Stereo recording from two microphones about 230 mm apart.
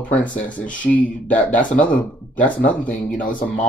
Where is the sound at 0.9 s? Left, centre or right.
Centre.